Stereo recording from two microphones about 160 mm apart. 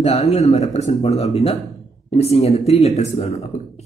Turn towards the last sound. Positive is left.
turn(degrees=45)  # may be behind; listen again after turning